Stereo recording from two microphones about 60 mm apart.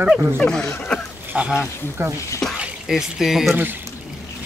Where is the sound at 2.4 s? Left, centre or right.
Centre.